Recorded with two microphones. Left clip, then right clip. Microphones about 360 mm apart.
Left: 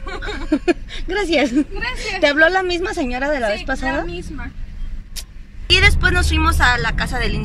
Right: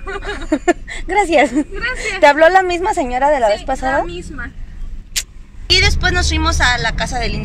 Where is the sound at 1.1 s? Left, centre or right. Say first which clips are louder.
Right 5 dB; right.